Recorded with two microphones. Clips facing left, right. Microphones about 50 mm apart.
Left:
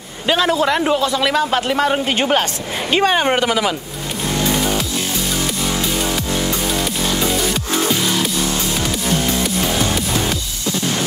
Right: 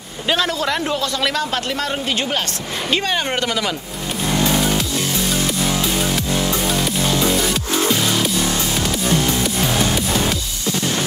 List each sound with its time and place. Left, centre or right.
0.3 s a man's voice: centre
2.0 s a woman's voice: left